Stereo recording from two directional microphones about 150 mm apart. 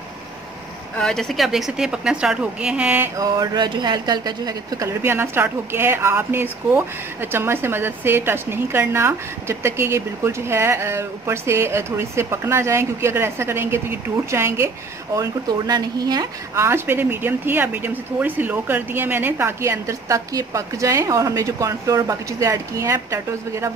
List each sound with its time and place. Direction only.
0.9 s a woman's voice: 5° left (ahead or behind)
3.2 s a woman's voice: 30° right (ahead or behind)